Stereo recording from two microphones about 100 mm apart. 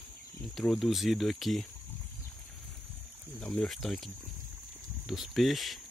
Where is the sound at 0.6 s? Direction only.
Centre (ahead or behind).